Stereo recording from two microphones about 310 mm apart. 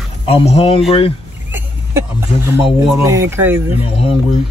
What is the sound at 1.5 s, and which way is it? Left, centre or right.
Speech, centre.